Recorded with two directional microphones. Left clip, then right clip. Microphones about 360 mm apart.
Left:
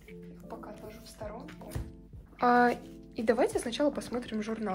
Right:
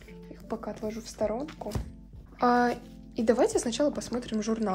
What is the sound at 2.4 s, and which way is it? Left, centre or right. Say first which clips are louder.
Speech: even; centre.